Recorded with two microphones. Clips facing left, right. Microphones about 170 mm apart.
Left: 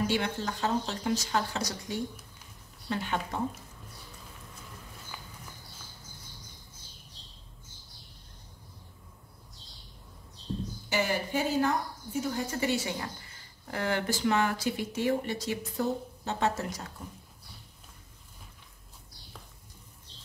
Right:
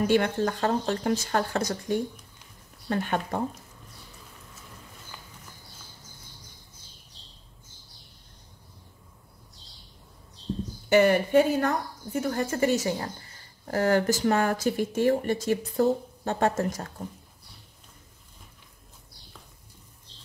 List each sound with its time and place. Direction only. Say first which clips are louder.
0.0 s speech: right 7 dB; 55° right (ahead or behind)
10.9 s speech: right 10 dB; 60° right (ahead or behind)